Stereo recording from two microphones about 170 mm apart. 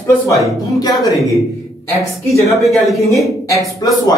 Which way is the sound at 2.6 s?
Centre (ahead or behind).